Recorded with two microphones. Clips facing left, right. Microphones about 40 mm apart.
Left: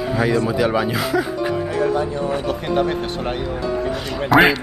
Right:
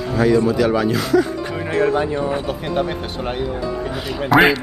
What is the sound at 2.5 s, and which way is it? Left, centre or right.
Speech, centre.